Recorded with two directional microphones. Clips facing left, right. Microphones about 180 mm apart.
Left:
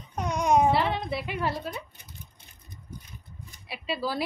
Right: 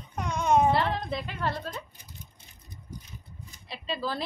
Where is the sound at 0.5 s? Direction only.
5° left (ahead or behind).